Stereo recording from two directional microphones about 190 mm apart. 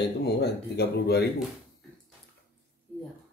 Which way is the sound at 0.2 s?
60° left (ahead or behind).